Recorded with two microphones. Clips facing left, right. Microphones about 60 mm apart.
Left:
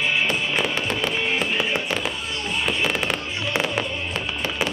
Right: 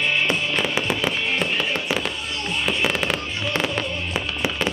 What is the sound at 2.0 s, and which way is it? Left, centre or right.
Fireworks, centre.